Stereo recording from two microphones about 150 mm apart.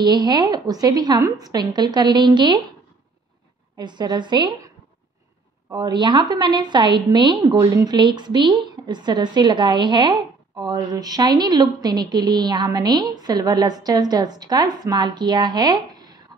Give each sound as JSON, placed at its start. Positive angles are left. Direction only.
{"t": 0.0, "sound": "a woman's voice", "side_deg": -30}
{"t": 3.7, "sound": "a woman's voice", "side_deg": -30}
{"t": 5.7, "sound": "a woman's voice", "side_deg": -30}